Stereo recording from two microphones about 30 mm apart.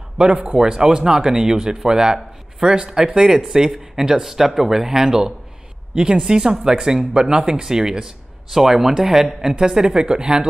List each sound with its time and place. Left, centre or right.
0.2 s speech: right
0.6 s speech: right
8.5 s speech: centre